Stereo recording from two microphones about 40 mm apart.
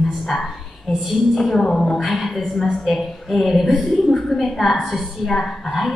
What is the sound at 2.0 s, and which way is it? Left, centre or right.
A woman's voice, centre.